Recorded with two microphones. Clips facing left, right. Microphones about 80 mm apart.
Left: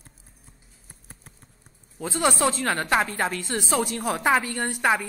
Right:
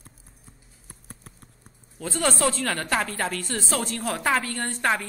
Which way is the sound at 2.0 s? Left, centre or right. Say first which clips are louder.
Left 1 dB; centre.